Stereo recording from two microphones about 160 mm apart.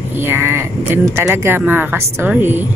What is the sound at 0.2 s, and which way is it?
Speech, 15° right (ahead or behind).